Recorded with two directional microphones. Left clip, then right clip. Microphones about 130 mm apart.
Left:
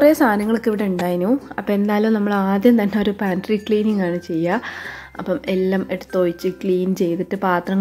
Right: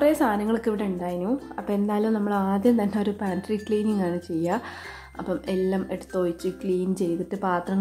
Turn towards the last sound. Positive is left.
turn(degrees=25)  # may be behind; listen again after turning